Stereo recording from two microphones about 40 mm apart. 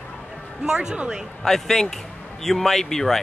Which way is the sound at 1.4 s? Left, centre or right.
Centre.